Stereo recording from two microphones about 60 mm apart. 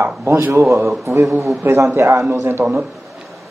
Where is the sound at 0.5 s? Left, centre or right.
Right.